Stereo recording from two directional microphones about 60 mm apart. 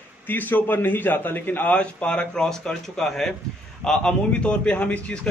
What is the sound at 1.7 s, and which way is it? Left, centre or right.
A man's voice, centre.